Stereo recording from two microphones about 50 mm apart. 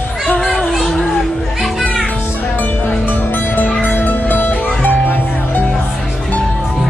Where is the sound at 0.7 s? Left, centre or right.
Centre.